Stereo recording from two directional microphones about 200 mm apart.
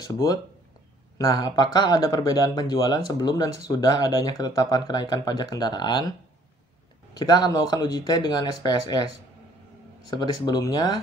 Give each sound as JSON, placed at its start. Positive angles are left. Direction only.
{"t": 0.0, "sound": "speech", "side_deg": 15}
{"t": 7.2, "sound": "speech", "side_deg": 20}
{"t": 10.0, "sound": "speech", "side_deg": 20}